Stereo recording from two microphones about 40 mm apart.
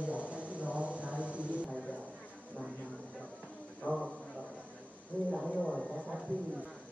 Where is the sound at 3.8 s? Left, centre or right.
Left.